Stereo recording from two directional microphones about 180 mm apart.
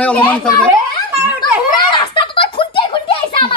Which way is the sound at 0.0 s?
5° left (ahead or behind).